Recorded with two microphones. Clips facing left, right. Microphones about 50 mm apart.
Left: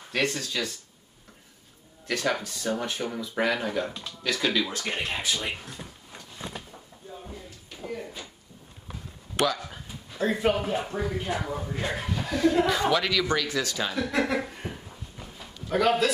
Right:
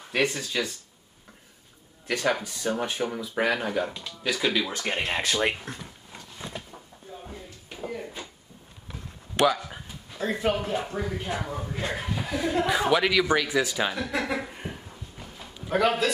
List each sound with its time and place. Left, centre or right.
0.1 s speech: centre
2.0 s speech: centre
4.7 s speech: right
5.1 s speech: right
7.7 s a sound: centre
9.6 s dog: centre
10.1 s speech: centre
12.1 s chuckle: centre
12.6 s speech: centre
13.9 s speech: centre
14.3 s a sound: centre
15.5 s a man's voice: centre